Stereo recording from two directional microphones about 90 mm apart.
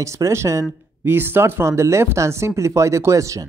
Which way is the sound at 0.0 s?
35° right (ahead or behind).